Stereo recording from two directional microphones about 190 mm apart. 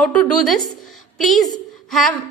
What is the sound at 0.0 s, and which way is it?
A woman's voice, 5° left (ahead or behind).